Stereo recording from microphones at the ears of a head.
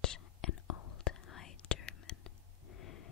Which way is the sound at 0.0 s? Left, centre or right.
Left.